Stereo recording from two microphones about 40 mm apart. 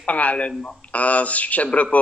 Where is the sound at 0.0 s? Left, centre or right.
Left.